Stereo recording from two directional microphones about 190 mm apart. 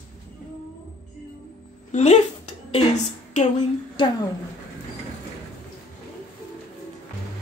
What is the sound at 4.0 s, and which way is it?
Speech, 25° left (ahead or behind).